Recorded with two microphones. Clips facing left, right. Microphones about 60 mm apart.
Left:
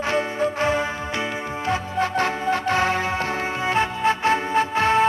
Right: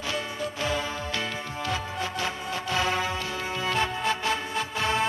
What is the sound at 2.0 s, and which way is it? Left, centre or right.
Music, left.